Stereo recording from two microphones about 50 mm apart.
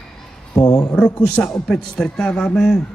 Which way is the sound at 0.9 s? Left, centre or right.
Centre.